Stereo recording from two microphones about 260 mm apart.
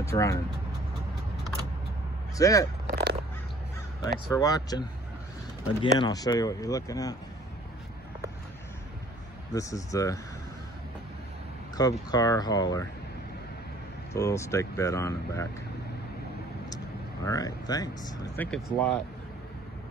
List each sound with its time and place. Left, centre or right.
0.0 s speech: centre
2.3 s speech: centre
2.9 s crow: right
4.3 s speech: centre
9.5 s speech: centre
11.7 s speech: centre
14.1 s speech: centre
16.7 s speech: centre